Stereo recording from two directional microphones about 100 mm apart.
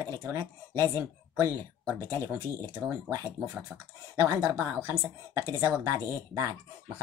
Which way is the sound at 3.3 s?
10° right (ahead or behind).